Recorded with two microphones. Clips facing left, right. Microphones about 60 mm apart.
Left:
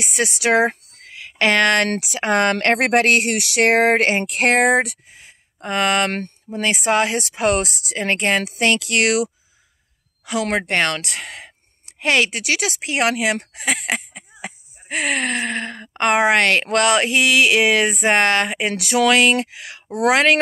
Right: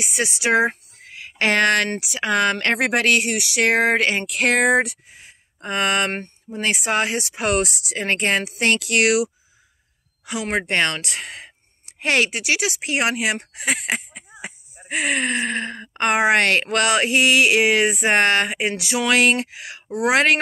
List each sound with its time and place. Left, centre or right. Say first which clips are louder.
0.0 s speech: left 2 dB; left
6.1 s speech: left 3 dB; left
6.6 s speech: left 3 dB; left
10.2 s speech: left 3 dB; left
10.7 s speech: left 1 dB; left